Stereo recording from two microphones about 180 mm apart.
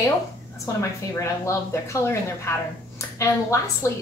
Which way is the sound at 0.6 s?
15° left (ahead or behind).